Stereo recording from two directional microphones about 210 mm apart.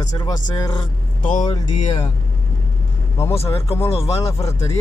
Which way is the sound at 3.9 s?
25° left (ahead or behind).